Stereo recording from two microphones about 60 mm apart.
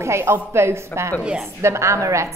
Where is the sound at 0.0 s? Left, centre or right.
Right.